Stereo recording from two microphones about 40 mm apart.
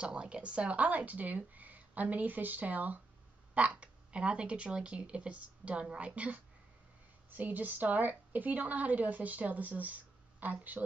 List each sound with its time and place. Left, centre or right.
0.0 s speech: right
7.2 s a woman's voice: right